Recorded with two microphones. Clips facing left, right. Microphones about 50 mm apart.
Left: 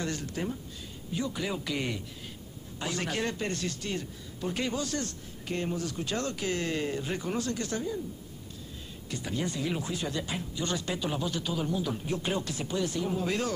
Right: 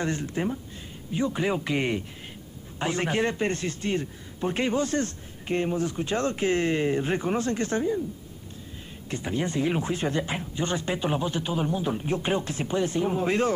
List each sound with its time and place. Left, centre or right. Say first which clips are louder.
0.0 s a man's voice: right 5 dB; right
9.1 s a man's voice: right 5 dB; right